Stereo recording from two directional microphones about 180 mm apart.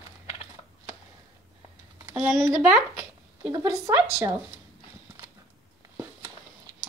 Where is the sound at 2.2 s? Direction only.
15° right (ahead or behind).